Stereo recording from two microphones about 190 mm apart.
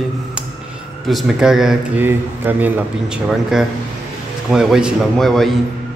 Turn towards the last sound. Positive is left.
turn(degrees=0)  # may be behind; listen again after turning